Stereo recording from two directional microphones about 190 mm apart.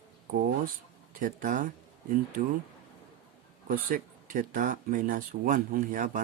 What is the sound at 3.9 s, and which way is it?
Speech, 45° right (ahead or behind).